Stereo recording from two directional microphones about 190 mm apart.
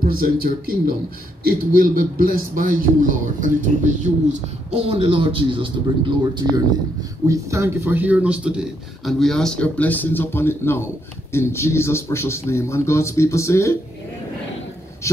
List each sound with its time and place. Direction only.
0.0 s a man's voice: 50° right (ahead or behind); by 13.7 s 15° left (ahead or behind)